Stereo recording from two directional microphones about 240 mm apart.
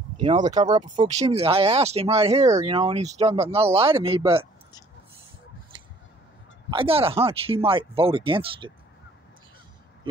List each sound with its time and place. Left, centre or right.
0.2 s speech: centre
6.7 s speech: right